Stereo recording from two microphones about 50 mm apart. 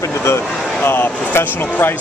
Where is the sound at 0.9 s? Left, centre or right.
Left.